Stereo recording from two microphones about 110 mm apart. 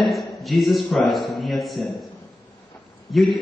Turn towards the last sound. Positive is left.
turn(degrees=0)  # may be behind; listen again after turning